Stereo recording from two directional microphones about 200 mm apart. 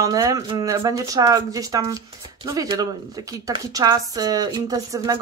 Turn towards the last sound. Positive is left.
turn(degrees=-20)  # may be behind; listen again after turning